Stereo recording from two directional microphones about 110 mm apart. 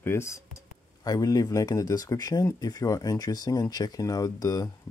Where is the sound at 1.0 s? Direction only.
35° left (ahead or behind).